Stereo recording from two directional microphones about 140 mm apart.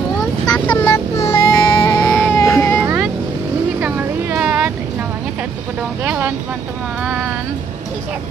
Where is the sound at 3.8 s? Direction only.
10° right (ahead or behind).